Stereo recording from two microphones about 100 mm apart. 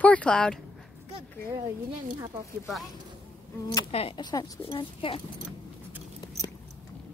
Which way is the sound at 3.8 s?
80° left.